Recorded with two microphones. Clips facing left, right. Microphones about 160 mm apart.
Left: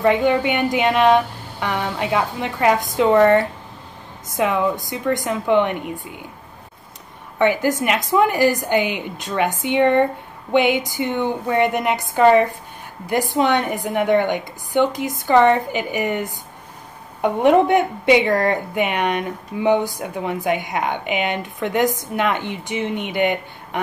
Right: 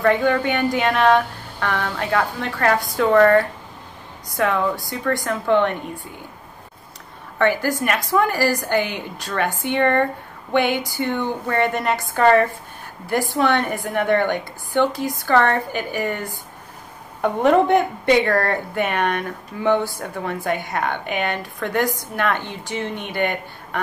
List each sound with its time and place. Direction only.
0.0 s a woman's voice: 15° left (ahead or behind)
7.3 s a woman's voice: 20° left (ahead or behind)